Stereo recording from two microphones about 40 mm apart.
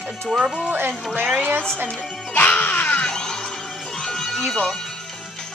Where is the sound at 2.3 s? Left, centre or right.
Left.